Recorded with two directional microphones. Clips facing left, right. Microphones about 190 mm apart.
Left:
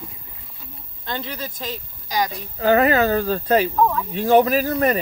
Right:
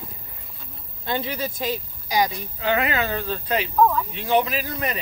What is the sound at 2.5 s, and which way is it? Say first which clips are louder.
Speech: left 8 dB; 40° left (ahead or behind).